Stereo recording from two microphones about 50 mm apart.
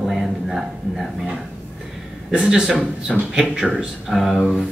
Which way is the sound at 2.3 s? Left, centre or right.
Centre.